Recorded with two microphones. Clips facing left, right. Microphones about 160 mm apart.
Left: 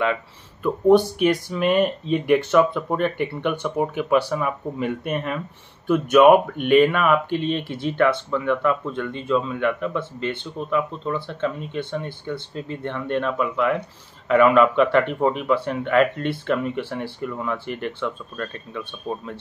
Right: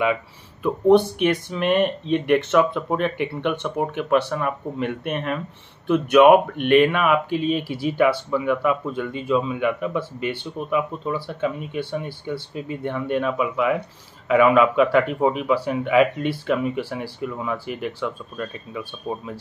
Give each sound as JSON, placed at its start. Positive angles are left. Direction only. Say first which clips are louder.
{"t": 0.0, "sound": "speech", "louder": "right 1 dB", "side_deg": -10}